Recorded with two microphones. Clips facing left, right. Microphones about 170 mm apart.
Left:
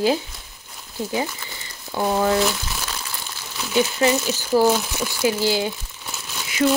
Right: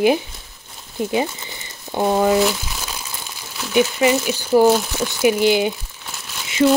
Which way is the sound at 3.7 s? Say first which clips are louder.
Right 3 dB; 15° right (ahead or behind).